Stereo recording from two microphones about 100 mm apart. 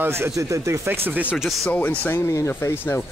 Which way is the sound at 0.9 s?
15° right (ahead or behind).